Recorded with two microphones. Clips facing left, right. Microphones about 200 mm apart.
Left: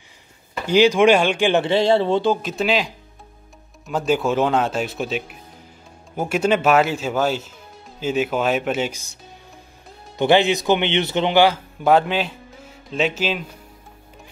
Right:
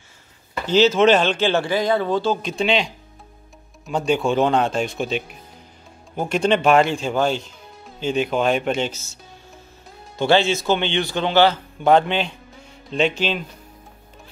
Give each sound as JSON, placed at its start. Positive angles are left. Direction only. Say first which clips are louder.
{"t": 0.7, "sound": "speech", "louder": "left 1 dB", "side_deg": 10}
{"t": 2.4, "sound": "speech", "louder": "even", "side_deg": 5}
{"t": 10.1, "sound": "speech", "louder": "left 1 dB", "side_deg": 15}